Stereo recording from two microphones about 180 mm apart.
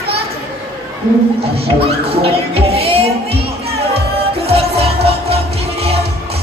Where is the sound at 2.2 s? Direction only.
30° right (ahead or behind).